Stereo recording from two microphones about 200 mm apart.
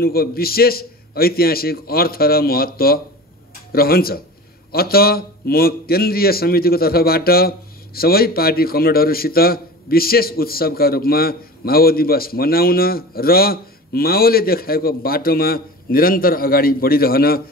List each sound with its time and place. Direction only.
0.0 s a man's voice: 50° left (ahead or behind)